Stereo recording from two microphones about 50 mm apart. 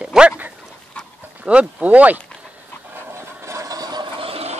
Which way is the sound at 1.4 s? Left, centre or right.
Right.